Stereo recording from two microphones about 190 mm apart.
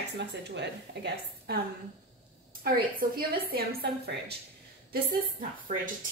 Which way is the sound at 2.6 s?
50° right (ahead or behind).